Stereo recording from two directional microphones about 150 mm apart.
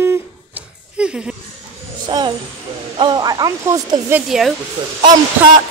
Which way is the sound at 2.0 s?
30° right (ahead or behind).